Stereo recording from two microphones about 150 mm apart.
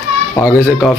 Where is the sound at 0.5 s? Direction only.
20° left (ahead or behind).